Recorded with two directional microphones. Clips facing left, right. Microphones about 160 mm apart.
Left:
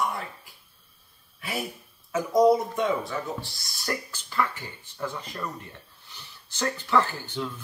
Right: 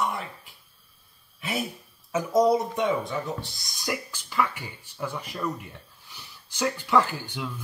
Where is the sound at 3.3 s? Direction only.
20° right (ahead or behind).